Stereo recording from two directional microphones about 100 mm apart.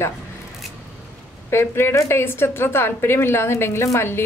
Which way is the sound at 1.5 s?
25° left (ahead or behind).